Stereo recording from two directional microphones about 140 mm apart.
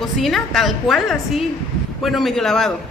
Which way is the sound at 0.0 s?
Centre (ahead or behind).